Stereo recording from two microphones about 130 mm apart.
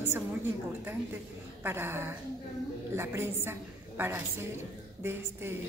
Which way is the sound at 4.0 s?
20° right (ahead or behind).